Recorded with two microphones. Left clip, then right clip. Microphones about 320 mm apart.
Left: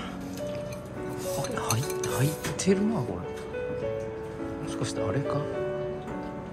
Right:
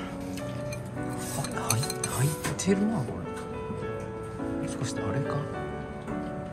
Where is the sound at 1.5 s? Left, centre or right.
Centre.